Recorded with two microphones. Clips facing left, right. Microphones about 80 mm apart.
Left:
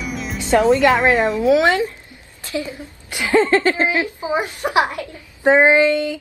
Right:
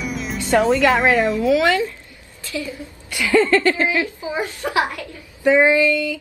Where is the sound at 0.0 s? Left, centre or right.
Centre.